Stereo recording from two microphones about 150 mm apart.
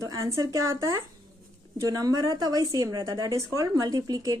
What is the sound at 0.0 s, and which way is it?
A woman's voice, 20° right (ahead or behind).